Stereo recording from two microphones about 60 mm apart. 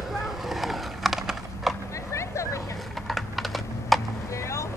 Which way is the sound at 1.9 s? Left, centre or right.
Left.